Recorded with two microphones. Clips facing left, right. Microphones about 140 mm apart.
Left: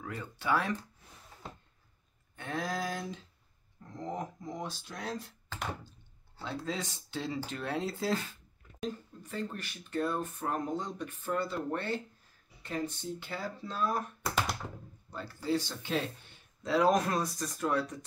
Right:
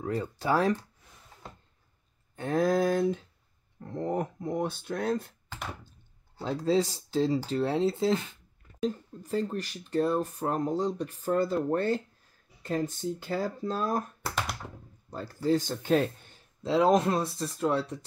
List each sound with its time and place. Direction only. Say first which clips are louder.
0.0 s speech: right 7 dB; 35° right (ahead or behind)
2.3 s speech: right 10 dB; 45° right (ahead or behind)
6.4 s speech: right 11 dB; 35° right (ahead or behind)
8.8 s speech: right 7 dB; 35° right (ahead or behind)
15.0 s speech: right 6 dB; 40° right (ahead or behind)
16.6 s speech: right 4 dB; 25° right (ahead or behind)